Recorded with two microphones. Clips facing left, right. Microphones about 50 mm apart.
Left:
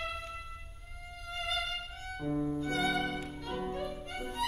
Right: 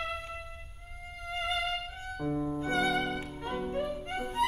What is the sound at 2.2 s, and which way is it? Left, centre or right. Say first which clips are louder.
Violin: right 1 dB; centre.